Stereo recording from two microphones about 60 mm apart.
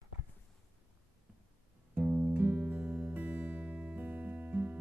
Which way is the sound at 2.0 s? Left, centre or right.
Right.